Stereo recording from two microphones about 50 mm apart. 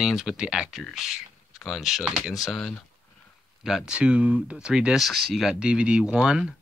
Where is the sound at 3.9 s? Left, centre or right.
Right.